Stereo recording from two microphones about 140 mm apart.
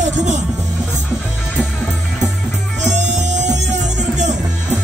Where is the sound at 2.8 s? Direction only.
60° right (ahead or behind).